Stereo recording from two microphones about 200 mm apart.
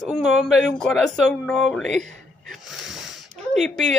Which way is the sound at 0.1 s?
Centre (ahead or behind).